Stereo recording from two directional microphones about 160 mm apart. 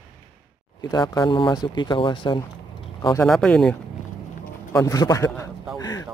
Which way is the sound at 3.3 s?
Centre (ahead or behind).